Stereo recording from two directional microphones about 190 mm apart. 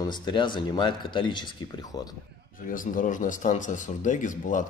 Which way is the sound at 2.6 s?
45° left (ahead or behind).